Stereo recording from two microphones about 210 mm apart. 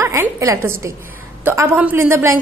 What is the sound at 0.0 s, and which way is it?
A woman's voice, 15° right (ahead or behind).